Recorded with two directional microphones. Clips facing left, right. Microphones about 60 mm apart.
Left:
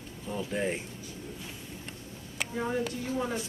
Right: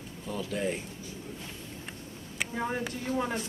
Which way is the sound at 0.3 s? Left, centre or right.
Left.